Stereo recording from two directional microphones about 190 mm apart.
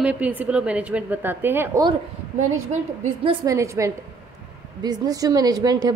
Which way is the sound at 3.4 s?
15° right (ahead or behind).